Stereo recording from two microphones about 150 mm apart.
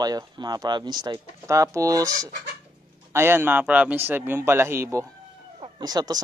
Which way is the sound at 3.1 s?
15° right (ahead or behind).